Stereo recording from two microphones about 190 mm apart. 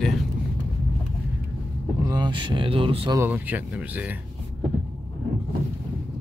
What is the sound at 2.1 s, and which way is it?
Speech, 25° right (ahead or behind).